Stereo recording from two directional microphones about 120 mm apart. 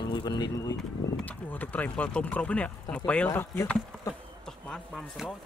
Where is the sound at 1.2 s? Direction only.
15° left (ahead or behind).